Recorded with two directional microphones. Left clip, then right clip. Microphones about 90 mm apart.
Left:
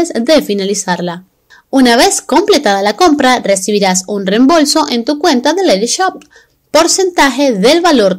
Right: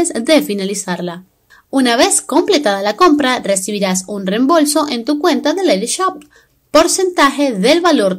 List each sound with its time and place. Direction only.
0.0 s speech: 15° left (ahead or behind)
0.8 s a woman's voice: 40° left (ahead or behind)
3.7 s a woman's voice: 40° left (ahead or behind)